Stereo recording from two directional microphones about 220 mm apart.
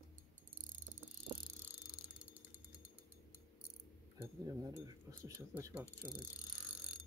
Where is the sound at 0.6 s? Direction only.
35° right (ahead or behind).